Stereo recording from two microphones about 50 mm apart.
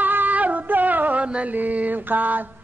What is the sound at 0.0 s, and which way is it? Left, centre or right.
Music, right.